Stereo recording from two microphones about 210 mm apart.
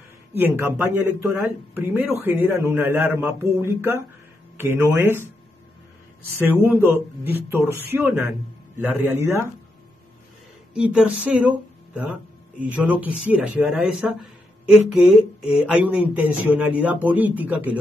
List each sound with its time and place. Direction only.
0.4 s speech: 10° right (ahead or behind)
6.4 s speech: 10° right (ahead or behind)
10.7 s speech: 5° right (ahead or behind)